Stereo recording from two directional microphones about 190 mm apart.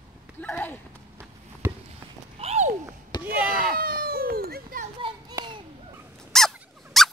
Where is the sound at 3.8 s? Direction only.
50° right (ahead or behind).